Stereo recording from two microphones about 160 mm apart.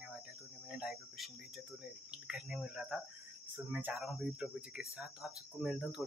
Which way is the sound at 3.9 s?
Centre (ahead or behind).